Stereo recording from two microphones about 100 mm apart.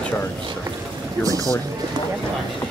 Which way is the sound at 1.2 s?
35° right (ahead or behind).